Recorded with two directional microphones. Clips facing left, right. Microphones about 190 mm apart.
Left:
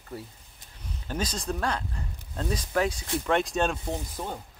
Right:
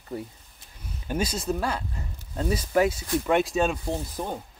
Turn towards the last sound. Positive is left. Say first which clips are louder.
# right 3 dB
turn(degrees=-5)  # may be behind; listen again after turning